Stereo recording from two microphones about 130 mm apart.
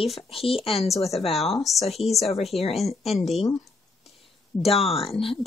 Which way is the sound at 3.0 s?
Centre (ahead or behind).